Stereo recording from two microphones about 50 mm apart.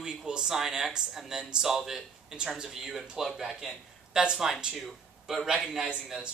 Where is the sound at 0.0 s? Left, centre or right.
Centre.